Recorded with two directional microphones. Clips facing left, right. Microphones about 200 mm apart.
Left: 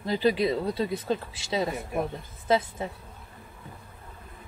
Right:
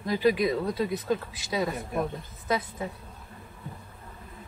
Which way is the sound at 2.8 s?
25° left (ahead or behind).